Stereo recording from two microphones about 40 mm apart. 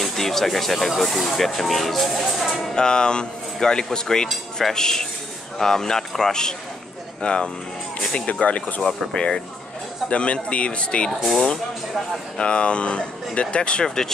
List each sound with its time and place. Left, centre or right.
0.0 s speech: centre
2.7 s speech: centre; by 8.8 s left
9.1 s speech: centre
10.0 s speech: left
12.4 s speech: left
13.8 s speech: centre